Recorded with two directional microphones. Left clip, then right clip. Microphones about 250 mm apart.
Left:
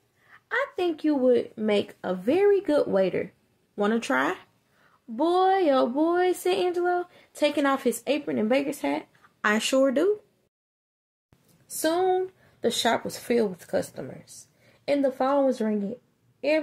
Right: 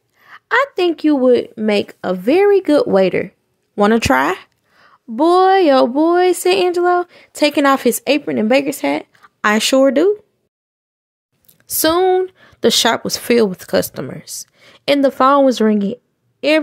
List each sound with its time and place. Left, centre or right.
0.2 s a woman's voice: right
11.8 s a woman's voice: right